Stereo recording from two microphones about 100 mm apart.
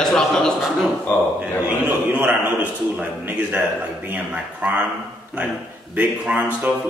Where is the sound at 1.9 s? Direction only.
20° right (ahead or behind).